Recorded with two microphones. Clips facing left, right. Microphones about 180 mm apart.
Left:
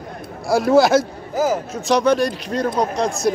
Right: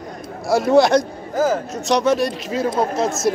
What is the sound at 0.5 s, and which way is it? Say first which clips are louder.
A man's voice: even; centre (ahead or behind).